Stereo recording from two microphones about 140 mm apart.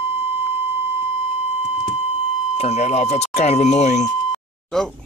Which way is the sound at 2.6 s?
50° left (ahead or behind).